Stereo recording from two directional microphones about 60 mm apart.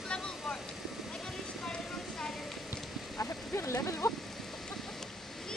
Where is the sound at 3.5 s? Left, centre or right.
Left.